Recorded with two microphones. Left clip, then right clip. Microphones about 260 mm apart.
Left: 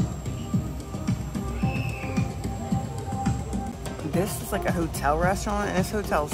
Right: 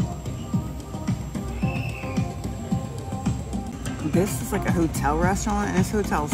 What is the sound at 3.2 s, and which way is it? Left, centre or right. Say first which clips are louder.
Music: left 2 dB; centre.